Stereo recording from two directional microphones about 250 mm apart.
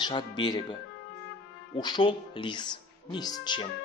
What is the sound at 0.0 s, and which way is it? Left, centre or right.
Speech, centre.